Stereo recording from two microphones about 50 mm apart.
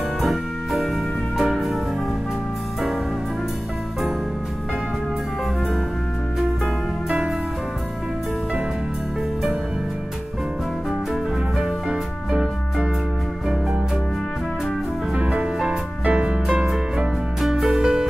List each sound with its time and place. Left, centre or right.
0.2 s music: centre
7.1 s music: centre
11.5 s music: centre
15.1 s music: right
16.4 s music: centre